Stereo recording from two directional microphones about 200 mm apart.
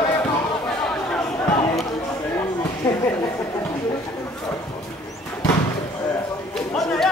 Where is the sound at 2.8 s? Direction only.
10° left (ahead or behind).